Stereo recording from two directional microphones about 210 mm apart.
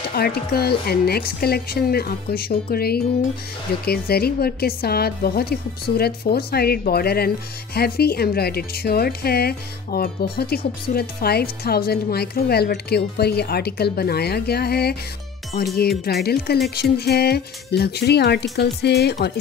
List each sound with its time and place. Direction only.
0.1 s speech: 50° left (ahead or behind)